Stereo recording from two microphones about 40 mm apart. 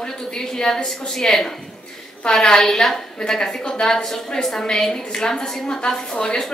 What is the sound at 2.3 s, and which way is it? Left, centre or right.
A woman's voice, centre.